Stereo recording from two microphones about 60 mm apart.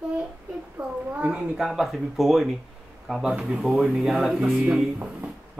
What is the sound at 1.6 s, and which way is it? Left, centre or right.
Speech, centre.